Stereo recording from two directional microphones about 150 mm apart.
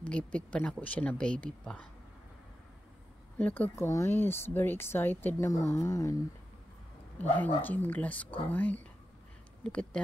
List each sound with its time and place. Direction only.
0.0 s speech: 10° left (ahead or behind)
3.3 s speech: 10° left (ahead or behind)
7.2 s speech: 10° left (ahead or behind)